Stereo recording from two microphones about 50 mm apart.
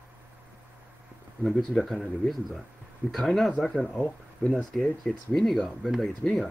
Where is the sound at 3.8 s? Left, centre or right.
Left.